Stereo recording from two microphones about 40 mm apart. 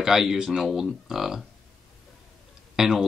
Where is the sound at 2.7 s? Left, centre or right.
Centre.